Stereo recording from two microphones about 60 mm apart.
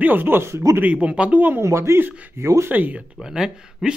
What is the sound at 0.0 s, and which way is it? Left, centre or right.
Speech, right.